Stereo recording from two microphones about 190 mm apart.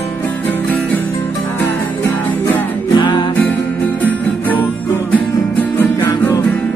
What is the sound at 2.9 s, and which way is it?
Music, 25° left (ahead or behind).